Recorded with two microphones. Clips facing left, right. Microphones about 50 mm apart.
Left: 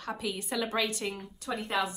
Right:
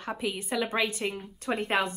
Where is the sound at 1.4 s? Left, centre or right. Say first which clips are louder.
Right 4 dB; right.